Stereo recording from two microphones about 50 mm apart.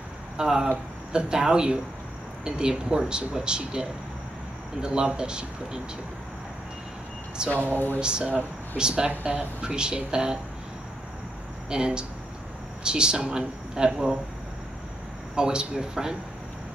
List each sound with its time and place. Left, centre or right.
0.4 s speech: centre
4.8 s speech: centre
7.4 s speech: centre
7.7 s speech: left
8.0 s speech: centre
9.1 s speech: right
9.7 s speech: centre
11.7 s speech: centre
15.3 s speech: centre